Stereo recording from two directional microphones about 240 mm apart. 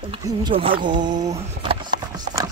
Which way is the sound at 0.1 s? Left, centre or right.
Centre.